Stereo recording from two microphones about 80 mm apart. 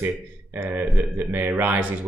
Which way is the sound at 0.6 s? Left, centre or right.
Right.